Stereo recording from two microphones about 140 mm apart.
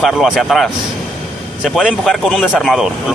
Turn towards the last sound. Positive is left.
turn(degrees=0)  # may be behind; listen again after turning